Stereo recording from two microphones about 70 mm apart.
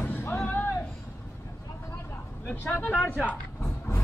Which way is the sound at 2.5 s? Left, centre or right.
Left.